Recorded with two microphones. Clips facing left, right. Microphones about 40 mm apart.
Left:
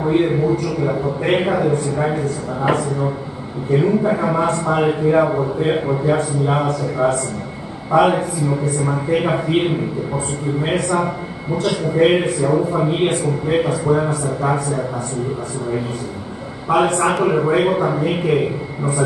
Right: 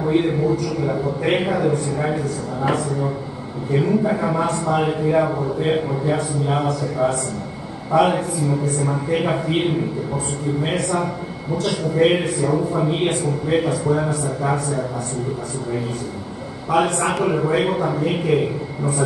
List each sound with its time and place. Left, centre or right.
0.0 s a man's voice: centre
3.7 s a man's voice: centre
16.7 s a man's voice: centre